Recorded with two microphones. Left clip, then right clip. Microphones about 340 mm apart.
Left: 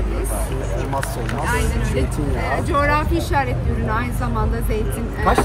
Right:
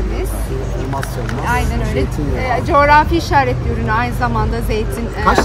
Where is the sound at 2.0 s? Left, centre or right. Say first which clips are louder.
Right 4 dB; centre.